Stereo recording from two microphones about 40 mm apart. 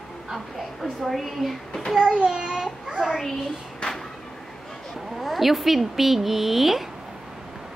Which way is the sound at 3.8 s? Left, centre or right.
Left.